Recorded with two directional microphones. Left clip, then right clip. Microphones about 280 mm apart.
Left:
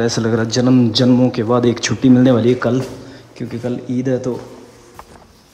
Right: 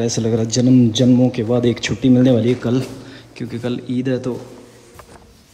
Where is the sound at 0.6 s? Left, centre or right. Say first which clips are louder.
Left 1 dB; left.